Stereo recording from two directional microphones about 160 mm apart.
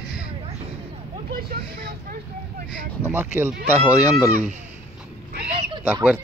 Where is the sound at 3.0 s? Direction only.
15° right (ahead or behind).